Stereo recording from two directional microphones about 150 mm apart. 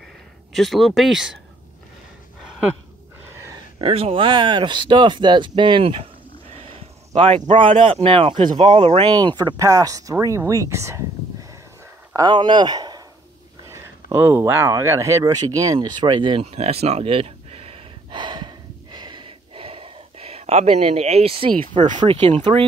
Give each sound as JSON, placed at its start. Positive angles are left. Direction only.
{"t": 0.5, "sound": "speech", "side_deg": 0}
{"t": 3.8, "sound": "speech", "side_deg": -40}
{"t": 6.5, "sound": "a sound", "side_deg": -40}
{"t": 7.2, "sound": "speech", "side_deg": -45}
{"t": 12.3, "sound": "speech", "side_deg": -30}
{"t": 13.7, "sound": "a sound", "side_deg": -20}
{"t": 21.7, "sound": "speech", "side_deg": -30}
{"t": 22.1, "sound": "speech", "side_deg": -45}